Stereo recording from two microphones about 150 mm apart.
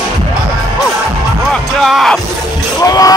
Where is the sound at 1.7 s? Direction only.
Centre (ahead or behind).